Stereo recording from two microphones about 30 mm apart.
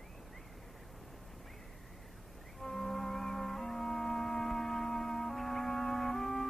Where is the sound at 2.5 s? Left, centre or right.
Centre.